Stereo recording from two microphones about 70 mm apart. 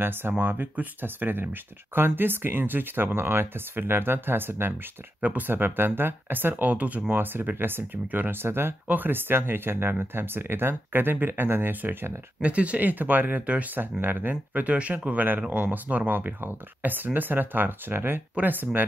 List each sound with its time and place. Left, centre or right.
0.0 s speech: right
12.4 s speech: centre